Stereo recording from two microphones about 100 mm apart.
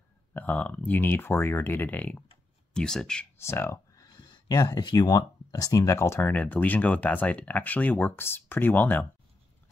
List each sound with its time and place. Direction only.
0.3 s speech: 15° left (ahead or behind)
3.3 s speech: 25° left (ahead or behind)